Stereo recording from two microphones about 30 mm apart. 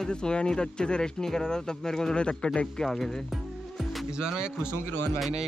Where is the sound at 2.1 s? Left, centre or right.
Left.